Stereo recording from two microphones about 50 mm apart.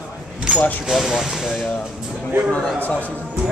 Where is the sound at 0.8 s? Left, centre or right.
Centre.